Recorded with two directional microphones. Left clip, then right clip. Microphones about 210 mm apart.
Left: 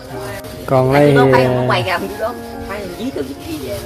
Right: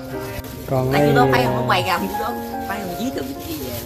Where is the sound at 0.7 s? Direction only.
5° left (ahead or behind).